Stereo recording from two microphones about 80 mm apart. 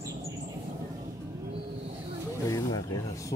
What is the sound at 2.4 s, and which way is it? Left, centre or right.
Snake, left.